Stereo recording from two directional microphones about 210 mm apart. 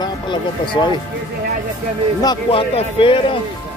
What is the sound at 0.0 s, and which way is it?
Speech, 20° left (ahead or behind).